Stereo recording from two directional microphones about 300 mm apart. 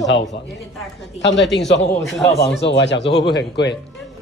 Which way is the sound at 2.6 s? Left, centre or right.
Left.